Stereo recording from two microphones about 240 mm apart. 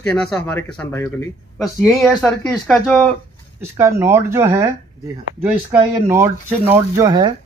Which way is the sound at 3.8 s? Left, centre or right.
Centre.